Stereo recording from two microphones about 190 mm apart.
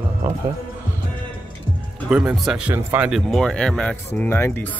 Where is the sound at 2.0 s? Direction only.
5° right (ahead or behind).